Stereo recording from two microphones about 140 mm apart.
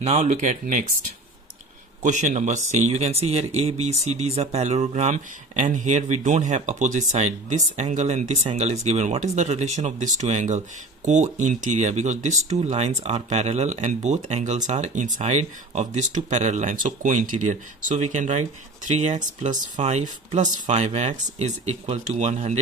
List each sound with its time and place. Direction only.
0.0 s speech: 50° right (ahead or behind)
2.0 s speech: 60° right (ahead or behind)
5.6 s speech: 60° right (ahead or behind)